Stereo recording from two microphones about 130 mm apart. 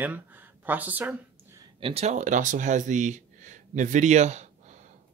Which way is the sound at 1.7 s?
45° right (ahead or behind).